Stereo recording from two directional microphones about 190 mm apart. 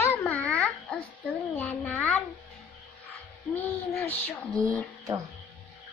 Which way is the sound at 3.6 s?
10° left (ahead or behind).